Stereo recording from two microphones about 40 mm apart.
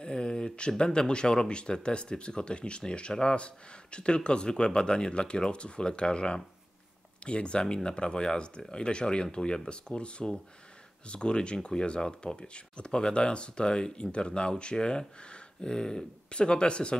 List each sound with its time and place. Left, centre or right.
0.0 s speech: left